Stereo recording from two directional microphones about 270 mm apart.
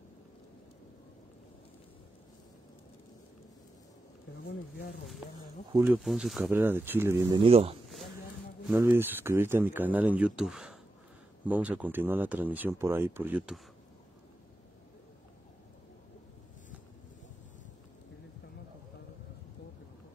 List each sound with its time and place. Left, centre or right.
4.5 s speech: left
5.7 s speech: centre
6.0 s speech: centre; by 7.7 s right
8.6 s speech: centre